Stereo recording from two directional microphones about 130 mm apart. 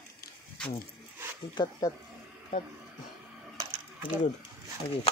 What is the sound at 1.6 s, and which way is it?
Speech, 30° left (ahead or behind).